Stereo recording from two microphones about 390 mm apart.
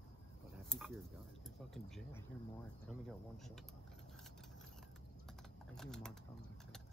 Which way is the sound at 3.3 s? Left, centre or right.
Centre.